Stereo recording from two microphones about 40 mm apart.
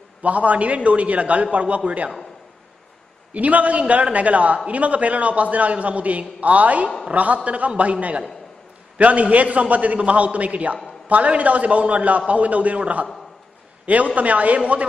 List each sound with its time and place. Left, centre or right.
0.2 s a man's voice: right
3.3 s a man's voice: right